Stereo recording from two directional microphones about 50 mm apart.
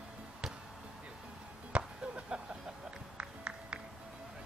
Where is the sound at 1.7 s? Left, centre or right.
Right.